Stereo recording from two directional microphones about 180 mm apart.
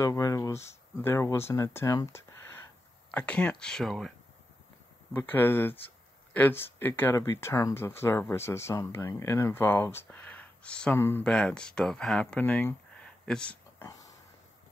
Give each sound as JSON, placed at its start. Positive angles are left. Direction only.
{"t": 0.0, "sound": "speech", "side_deg": 15}
{"t": 5.1, "sound": "speech", "side_deg": 10}
{"t": 13.8, "sound": "a sound", "side_deg": 20}